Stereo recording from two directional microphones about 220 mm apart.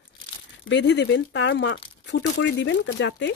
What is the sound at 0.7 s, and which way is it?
Speech, 50° left (ahead or behind).